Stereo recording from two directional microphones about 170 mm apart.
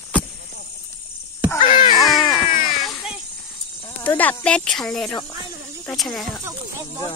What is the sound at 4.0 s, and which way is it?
Speech, 10° left (ahead or behind).